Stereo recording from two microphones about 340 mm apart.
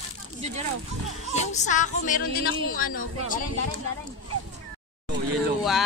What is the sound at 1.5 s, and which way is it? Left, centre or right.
Music, left.